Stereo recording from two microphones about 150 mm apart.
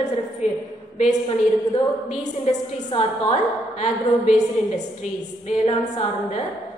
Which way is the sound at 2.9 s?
40° left (ahead or behind).